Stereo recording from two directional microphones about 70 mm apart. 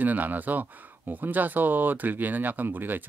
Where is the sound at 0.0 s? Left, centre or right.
Right.